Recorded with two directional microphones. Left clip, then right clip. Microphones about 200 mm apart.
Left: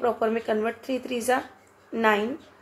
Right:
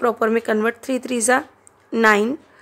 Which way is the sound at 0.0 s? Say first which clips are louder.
Right 6 dB; 50° right (ahead or behind).